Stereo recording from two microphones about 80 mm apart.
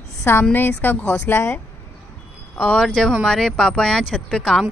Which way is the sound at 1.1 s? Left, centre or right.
Left.